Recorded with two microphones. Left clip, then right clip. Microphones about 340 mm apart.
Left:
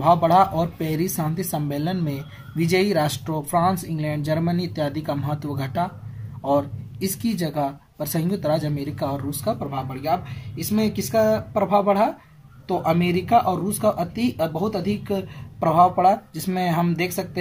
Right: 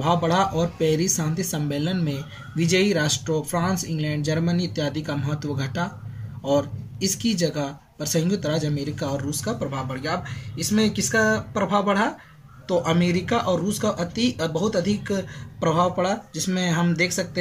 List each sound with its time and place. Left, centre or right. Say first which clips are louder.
0.0 s speech: left 5 dB; centre